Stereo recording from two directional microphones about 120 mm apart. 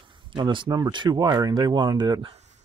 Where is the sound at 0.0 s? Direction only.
45° right (ahead or behind).